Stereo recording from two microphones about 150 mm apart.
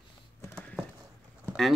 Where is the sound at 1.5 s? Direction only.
Centre (ahead or behind).